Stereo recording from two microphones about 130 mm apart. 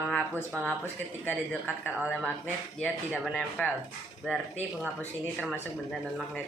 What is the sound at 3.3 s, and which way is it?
Speech, 5° left (ahead or behind).